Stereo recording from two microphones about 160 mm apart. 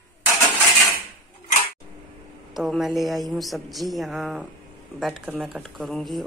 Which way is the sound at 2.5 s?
Centre (ahead or behind).